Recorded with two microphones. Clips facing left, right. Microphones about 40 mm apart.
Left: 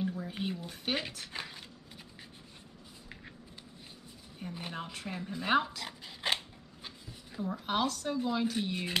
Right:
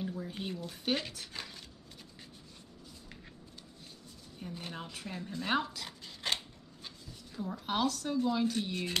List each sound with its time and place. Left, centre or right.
0.0 s speech: centre
1.3 s a sound: left
4.4 s speech: centre